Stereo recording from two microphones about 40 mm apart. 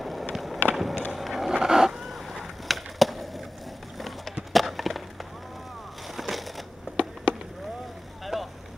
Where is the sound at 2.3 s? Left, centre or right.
Centre.